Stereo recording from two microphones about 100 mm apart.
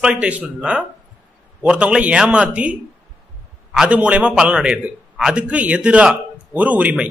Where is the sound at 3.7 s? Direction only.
10° right (ahead or behind).